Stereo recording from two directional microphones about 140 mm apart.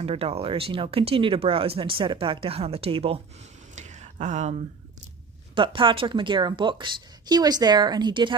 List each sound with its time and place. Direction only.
0.0 s speech: 45° right (ahead or behind)
3.7 s a sound: 55° right (ahead or behind)
5.5 s speech: 35° right (ahead or behind)